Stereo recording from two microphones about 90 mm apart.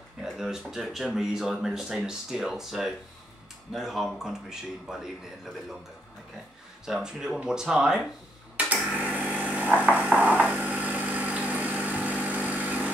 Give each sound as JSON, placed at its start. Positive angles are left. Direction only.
{"t": 0.2, "sound": "speech", "side_deg": -5}
{"t": 6.9, "sound": "speech", "side_deg": -5}
{"t": 8.9, "sound": "vehicle", "side_deg": -15}